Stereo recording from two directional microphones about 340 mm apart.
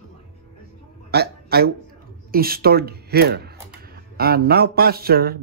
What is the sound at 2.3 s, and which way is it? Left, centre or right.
Speech, right.